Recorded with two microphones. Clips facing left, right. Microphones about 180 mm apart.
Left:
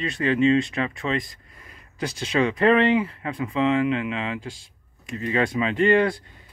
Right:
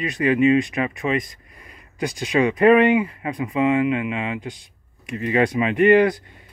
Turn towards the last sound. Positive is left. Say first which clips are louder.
# right 4 dB
turn(degrees=-20)  # may be behind; listen again after turning